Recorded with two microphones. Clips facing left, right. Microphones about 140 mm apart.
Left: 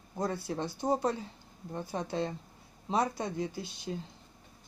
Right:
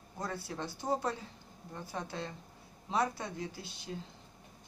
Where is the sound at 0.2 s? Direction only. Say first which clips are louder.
Left 6 dB; 20° left (ahead or behind).